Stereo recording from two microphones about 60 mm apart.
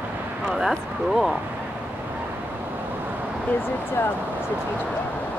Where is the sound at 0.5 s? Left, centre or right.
Centre.